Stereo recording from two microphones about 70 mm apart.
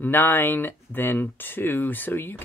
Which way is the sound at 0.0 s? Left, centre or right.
Left.